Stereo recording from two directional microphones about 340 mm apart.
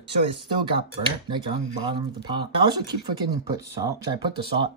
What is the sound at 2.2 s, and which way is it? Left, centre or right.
Speech, centre.